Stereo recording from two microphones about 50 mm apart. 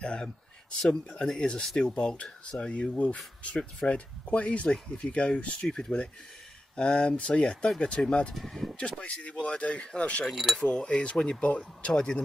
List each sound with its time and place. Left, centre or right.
0.0 s a sound: centre
1.0 s speech: centre
4.6 s speech: centre
8.4 s speech: centre
8.7 s speech: centre
10.3 s speech: centre
10.6 s speech: centre